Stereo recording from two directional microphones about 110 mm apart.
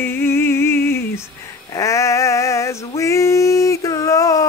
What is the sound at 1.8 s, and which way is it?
Male singing, 30° left (ahead or behind).